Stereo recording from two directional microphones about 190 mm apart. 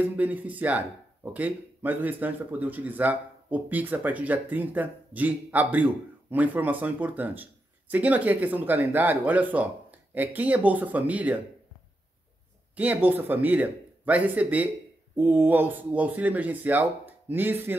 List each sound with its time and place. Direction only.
0.0 s speech: 10° right (ahead or behind)
12.7 s speech: 10° right (ahead or behind)